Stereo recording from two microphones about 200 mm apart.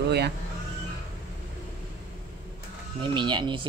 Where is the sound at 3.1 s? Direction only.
25° right (ahead or behind).